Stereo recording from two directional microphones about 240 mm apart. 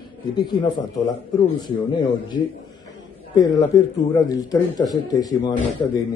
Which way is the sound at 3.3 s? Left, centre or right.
Centre.